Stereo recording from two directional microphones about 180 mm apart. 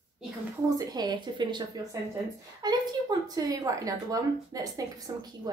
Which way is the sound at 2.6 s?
20° right (ahead or behind).